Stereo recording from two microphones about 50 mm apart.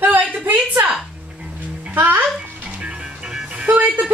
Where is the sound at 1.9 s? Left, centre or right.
Right.